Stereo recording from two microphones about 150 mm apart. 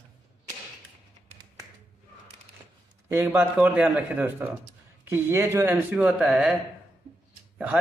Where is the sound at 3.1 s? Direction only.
15° right (ahead or behind).